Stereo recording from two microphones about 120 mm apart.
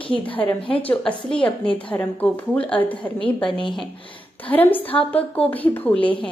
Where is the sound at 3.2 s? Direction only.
45° left (ahead or behind).